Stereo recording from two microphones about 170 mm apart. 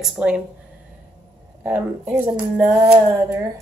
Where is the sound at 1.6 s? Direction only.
10° right (ahead or behind).